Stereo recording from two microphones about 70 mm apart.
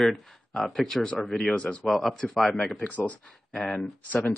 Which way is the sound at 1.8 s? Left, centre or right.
Centre.